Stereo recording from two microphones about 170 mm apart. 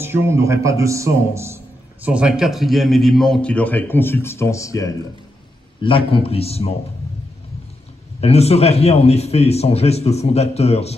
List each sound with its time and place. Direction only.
0.0 s speech: 15° right (ahead or behind)
2.0 s a man's voice: 5° right (ahead or behind); by 4.9 s 20° left (ahead or behind)
5.8 s a man's voice: 30° left (ahead or behind)
8.2 s a man's voice: 35° left (ahead or behind)